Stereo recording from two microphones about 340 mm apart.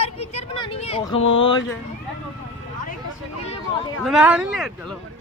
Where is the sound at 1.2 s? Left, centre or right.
Left.